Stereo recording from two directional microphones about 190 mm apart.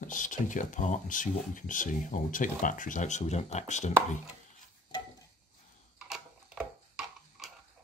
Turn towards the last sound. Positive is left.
turn(degrees=-5)  # may be behind; listen again after turning